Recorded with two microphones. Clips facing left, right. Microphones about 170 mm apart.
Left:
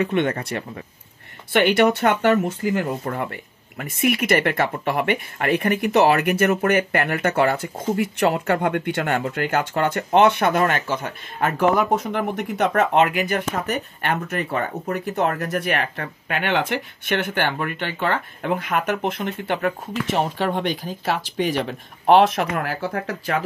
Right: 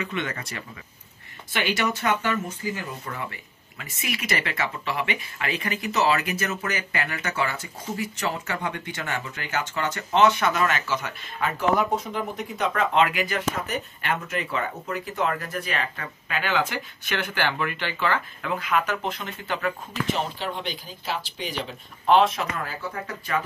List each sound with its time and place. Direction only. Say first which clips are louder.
0.0 s speech: left 9 dB; 55° left (ahead or behind)
12.1 s speech: left 6 dB; 65° left (ahead or behind); by 23.4 s 80° left